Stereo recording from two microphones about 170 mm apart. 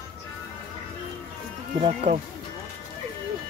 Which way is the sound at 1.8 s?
40° right (ahead or behind).